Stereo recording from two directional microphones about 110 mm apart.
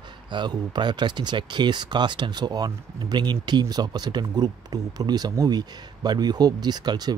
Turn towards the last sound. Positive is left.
turn(degrees=-40)  # may be behind; listen again after turning